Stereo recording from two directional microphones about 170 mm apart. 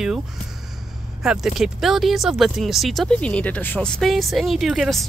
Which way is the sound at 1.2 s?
5° right (ahead or behind).